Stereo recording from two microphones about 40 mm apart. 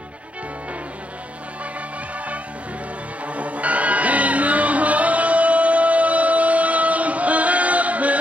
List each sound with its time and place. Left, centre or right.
3.3 s music: right